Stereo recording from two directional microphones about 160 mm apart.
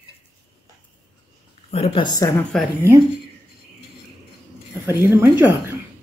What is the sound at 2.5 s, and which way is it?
Speech, 5° left (ahead or behind).